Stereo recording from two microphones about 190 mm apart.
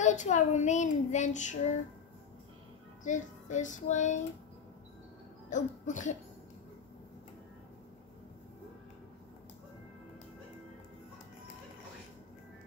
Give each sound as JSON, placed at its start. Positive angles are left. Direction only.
{"t": 0.0, "sound": "speech", "side_deg": 40}
{"t": 3.0, "sound": "speech", "side_deg": 40}
{"t": 5.5, "sound": "speech", "side_deg": 40}